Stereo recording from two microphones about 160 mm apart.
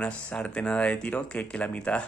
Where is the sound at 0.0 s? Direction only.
5° left (ahead or behind).